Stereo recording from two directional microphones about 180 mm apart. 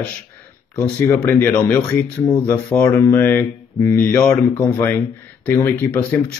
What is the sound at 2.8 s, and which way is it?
Speech, 20° left (ahead or behind).